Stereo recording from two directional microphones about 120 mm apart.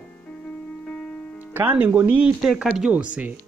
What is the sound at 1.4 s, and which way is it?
Speech, 15° right (ahead or behind).